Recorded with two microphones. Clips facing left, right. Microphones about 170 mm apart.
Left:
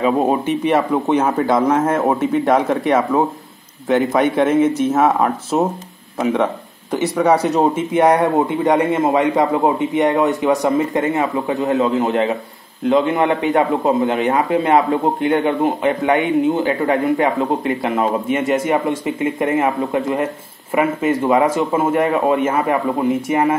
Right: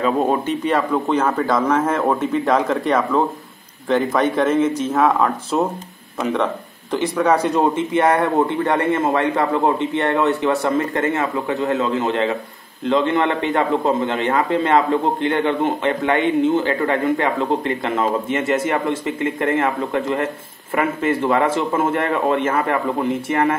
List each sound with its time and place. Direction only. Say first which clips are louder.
0.0 s a man's voice: left 2 dB; 10° left (ahead or behind)
6.3 s a man's voice: left 2 dB; 10° left (ahead or behind)